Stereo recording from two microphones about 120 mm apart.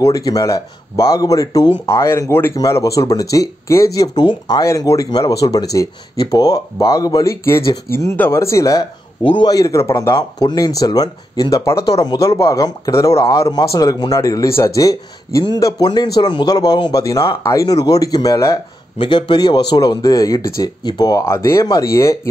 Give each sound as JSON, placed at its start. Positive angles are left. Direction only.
{"t": 0.0, "sound": "speech", "side_deg": 30}
{"t": 18.9, "sound": "speech", "side_deg": 45}